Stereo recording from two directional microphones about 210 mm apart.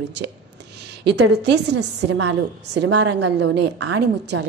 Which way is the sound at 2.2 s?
55° right (ahead or behind).